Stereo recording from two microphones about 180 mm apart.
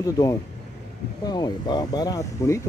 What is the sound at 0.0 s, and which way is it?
Speech, 20° left (ahead or behind).